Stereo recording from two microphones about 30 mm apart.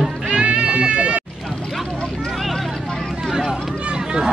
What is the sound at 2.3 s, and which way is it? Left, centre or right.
Vehicle, centre.